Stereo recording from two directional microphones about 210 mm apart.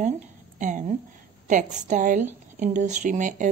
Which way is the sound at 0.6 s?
35° right (ahead or behind).